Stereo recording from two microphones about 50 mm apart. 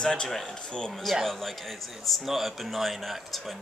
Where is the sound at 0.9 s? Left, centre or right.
Centre.